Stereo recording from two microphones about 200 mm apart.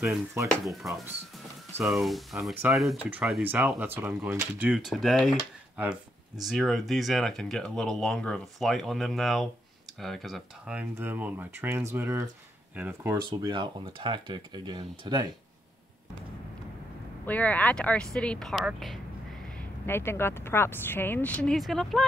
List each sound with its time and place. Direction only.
0.0 s speech: 10° right (ahead or behind)
0.5 s speech: centre (ahead or behind)
13.4 s speech: 20° right (ahead or behind)
17.3 s speech: 5° left (ahead or behind)
19.9 s speech: 10° left (ahead or behind)